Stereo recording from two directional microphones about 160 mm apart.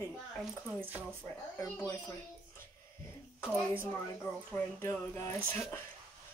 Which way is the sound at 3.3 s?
10° right (ahead or behind).